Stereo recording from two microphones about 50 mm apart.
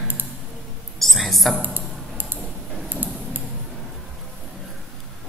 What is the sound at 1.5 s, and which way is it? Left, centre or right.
Tick-tock, right.